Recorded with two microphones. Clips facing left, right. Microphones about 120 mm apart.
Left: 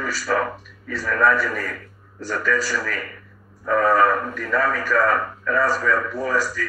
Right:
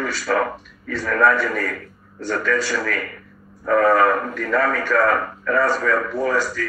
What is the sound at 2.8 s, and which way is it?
Speech, 55° right (ahead or behind).